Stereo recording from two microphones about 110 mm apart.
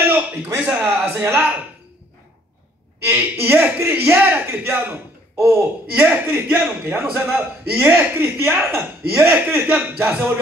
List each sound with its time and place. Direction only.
0.1 s a sound: 15° right (ahead or behind)
0.7 s a man's voice: 15° right (ahead or behind)
3.1 s a man's voice: 15° right (ahead or behind)